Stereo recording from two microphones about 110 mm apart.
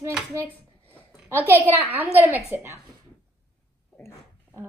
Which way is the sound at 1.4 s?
20° right (ahead or behind).